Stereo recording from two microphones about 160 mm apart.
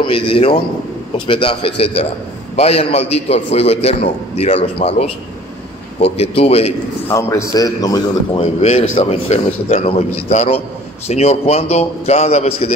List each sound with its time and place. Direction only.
0.0 s a man's voice: 35° left (ahead or behind)
7.1 s a man's voice: 20° left (ahead or behind)
8.4 s a man's voice: 40° left (ahead or behind)